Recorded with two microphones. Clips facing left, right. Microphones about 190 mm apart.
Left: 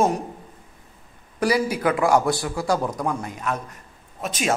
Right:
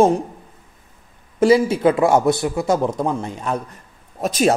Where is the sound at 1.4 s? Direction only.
25° right (ahead or behind).